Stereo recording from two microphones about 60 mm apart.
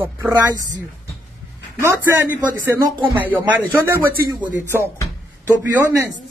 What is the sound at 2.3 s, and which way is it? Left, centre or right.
A man's voice, right.